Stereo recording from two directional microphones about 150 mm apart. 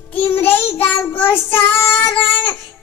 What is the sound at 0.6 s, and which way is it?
Child singing, 15° left (ahead or behind).